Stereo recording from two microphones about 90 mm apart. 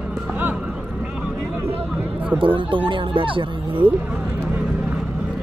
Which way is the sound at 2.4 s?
70° right (ahead or behind).